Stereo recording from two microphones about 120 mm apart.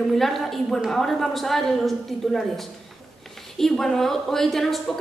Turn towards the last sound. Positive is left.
turn(degrees=0)  # may be behind; listen again after turning